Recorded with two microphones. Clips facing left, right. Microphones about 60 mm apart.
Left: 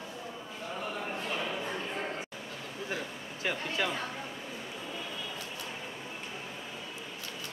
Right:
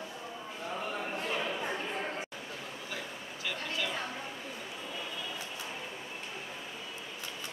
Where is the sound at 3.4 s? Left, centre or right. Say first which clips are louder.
Left 4 dB; left.